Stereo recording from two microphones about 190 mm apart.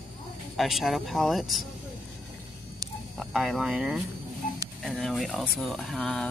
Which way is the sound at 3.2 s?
Centre (ahead or behind).